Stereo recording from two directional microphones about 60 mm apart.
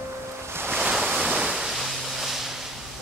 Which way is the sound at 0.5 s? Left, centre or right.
Right.